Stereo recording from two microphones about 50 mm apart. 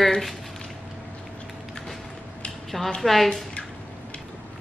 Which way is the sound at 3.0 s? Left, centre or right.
Centre.